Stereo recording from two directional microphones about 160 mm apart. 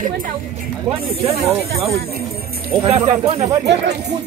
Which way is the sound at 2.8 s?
40° right (ahead or behind).